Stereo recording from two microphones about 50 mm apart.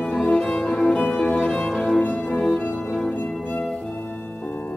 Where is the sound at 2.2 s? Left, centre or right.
Centre.